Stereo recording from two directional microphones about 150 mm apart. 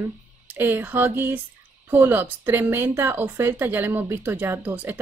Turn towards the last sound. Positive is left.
turn(degrees=-15)  # may be behind; listen again after turning